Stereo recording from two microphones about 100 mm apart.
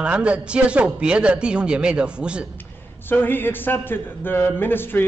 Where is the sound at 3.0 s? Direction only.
20° left (ahead or behind).